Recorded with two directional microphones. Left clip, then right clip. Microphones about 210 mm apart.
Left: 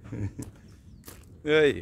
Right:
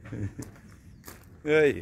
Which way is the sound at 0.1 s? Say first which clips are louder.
Left 1 dB; centre (ahead or behind).